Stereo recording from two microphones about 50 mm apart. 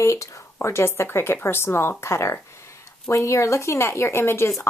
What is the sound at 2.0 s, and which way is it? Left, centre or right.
Speech, left.